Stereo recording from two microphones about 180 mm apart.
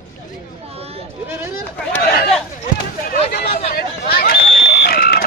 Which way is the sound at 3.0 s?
60° left (ahead or behind).